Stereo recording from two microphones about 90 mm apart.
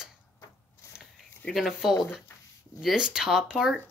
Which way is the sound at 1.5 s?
5° right (ahead or behind).